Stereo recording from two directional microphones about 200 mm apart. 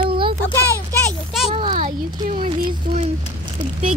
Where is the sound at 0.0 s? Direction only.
25° right (ahead or behind).